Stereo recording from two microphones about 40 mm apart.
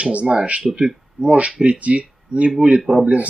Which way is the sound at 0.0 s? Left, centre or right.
Right.